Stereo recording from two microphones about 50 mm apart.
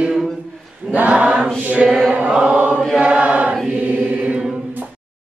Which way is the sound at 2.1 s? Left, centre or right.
Right.